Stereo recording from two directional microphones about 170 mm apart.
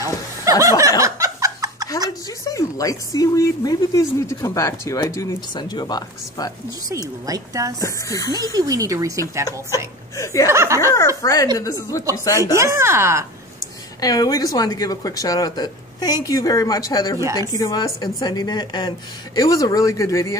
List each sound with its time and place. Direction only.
0.0 s snicker: 20° right (ahead or behind)
2.0 s speech: 20° left (ahead or behind)
7.2 s speech: 20° right (ahead or behind)
7.8 s speech: 20° left (ahead or behind)
8.5 s speech: 20° right (ahead or behind)
10.1 s speech: 20° left (ahead or behind)
10.5 s speech: 15° right (ahead or behind)
11.5 s speech: 20° left (ahead or behind)
12.5 s speech: 15° right (ahead or behind)
14.0 s speech: 20° left (ahead or behind)